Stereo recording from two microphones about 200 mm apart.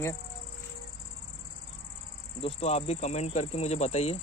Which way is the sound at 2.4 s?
30° left (ahead or behind).